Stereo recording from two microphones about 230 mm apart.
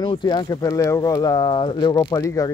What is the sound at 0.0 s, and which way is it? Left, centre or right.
Speech, centre.